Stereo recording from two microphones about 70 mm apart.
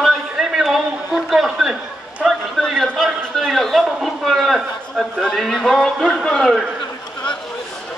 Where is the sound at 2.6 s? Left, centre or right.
Centre.